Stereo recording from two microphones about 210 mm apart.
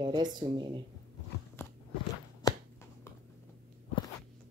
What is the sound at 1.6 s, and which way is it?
Biting, 10° left (ahead or behind).